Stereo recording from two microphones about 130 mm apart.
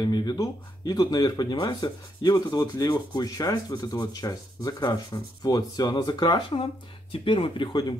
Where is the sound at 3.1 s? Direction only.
30° left (ahead or behind).